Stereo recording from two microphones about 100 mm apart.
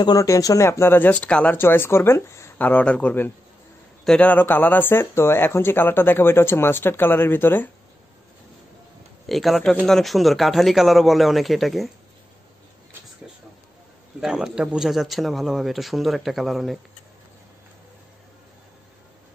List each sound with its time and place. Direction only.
0.0 s speech: 35° left (ahead or behind)
2.6 s speech: 15° left (ahead or behind)
4.0 s a man's voice: 5° left (ahead or behind)
4.3 s speech: 20° left (ahead or behind)
9.3 s speech: centre (ahead or behind)
14.2 s speech: 5° right (ahead or behind)